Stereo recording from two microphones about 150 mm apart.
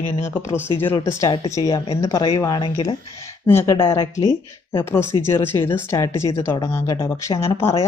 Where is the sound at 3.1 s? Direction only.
15° left (ahead or behind).